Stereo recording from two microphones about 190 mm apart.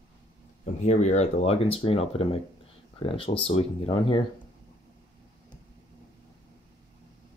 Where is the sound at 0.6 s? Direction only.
40° left (ahead or behind).